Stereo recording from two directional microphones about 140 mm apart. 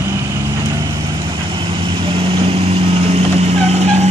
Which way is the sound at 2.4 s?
45° right (ahead or behind).